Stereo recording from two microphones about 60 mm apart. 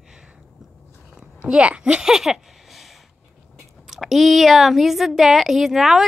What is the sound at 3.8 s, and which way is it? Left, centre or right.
A woman's voice, centre.